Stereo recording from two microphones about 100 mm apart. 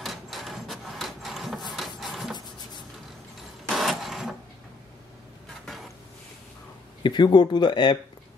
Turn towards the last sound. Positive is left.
turn(degrees=50)  # may be behind; listen again after turning